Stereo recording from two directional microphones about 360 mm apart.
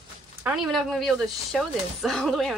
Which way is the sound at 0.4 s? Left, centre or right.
Centre.